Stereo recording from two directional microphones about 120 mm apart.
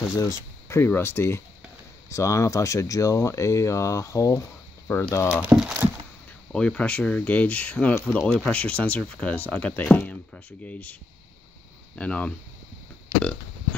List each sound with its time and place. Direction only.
0.1 s speech: 25° left (ahead or behind)
4.8 s speech: 15° left (ahead or behind)
5.1 s speech: 25° left (ahead or behind)
5.4 s speech: 5° right (ahead or behind)
6.5 s speech: 10° left (ahead or behind)